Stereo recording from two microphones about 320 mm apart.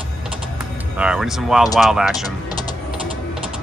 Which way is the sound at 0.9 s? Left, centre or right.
Centre.